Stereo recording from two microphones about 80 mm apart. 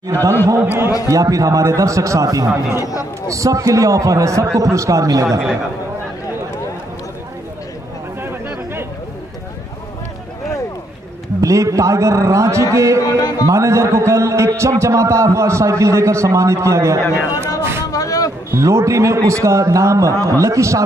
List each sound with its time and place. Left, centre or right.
0.1 s a man's voice: right
1.1 s a man's voice: right
2.8 s music: left
3.3 s a man's voice: right
8.2 s chatter: right
11.4 s a man's voice: right
13.0 s music: left
13.5 s a man's voice: right
17.6 s a sound: right
17.9 s a sound: left
18.5 s a man's voice: right